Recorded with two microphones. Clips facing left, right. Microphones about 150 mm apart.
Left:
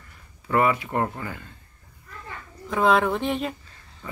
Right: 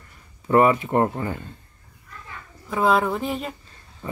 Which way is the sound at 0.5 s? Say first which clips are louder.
Right 5 dB; 30° right (ahead or behind).